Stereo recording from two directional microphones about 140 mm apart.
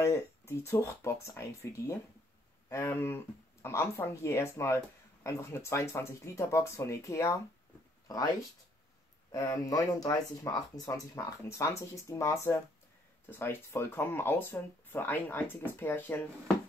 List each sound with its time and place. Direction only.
0.0 s speech: 20° left (ahead or behind)
9.3 s speech: 25° left (ahead or behind)